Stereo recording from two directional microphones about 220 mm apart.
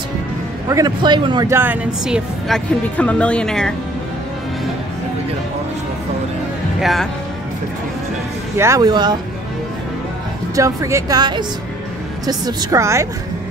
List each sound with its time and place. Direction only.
0.7 s speech: 15° right (ahead or behind); by 3.7 s 5° left (ahead or behind)
6.8 s speech: centre (ahead or behind)
8.5 s speech: 15° right (ahead or behind)
10.5 s speech: 15° right (ahead or behind)